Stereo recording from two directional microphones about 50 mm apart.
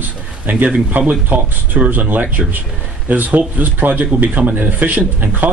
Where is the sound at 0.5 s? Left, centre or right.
Right.